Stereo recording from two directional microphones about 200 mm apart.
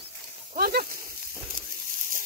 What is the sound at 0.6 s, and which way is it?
Snake, 45° right (ahead or behind).